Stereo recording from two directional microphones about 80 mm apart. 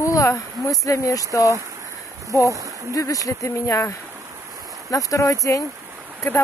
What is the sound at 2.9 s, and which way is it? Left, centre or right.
Speech, left.